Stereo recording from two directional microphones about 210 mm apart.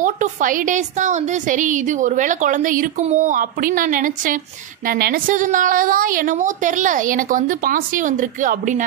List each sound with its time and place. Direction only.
0.0 s a woman's voice: 40° right (ahead or behind)